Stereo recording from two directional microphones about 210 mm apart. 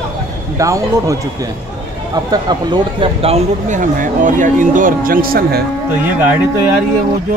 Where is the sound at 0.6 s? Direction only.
15° right (ahead or behind).